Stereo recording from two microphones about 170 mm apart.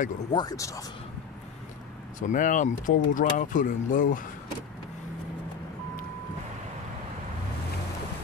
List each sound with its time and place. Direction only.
0.3 s speech: 25° left (ahead or behind)
2.1 s speech: 50° left (ahead or behind)